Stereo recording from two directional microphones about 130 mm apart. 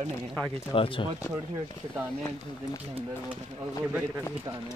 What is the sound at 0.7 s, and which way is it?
Speech, 40° left (ahead or behind).